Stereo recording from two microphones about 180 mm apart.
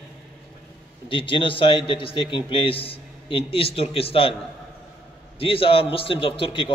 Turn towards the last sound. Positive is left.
turn(degrees=30)  # may be behind; listen again after turning